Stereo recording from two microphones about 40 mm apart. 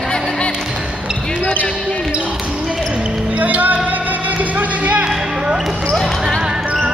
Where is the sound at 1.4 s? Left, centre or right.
Left.